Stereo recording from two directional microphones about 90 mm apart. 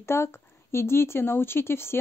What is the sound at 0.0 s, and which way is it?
A woman's voice, 30° left (ahead or behind).